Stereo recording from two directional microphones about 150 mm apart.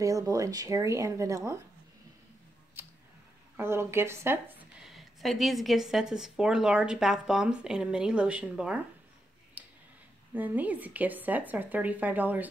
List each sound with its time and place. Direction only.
0.0 s speech: 25° right (ahead or behind)
2.8 s tick: 15° right (ahead or behind)
3.5 s a woman's voice: 15° right (ahead or behind)
4.8 s speech: centre (ahead or behind)
9.6 s tick-tock: 10° right (ahead or behind)
10.3 s speech: 10° right (ahead or behind)